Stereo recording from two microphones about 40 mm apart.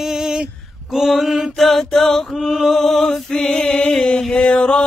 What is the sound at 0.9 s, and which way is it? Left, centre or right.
Male singing, centre.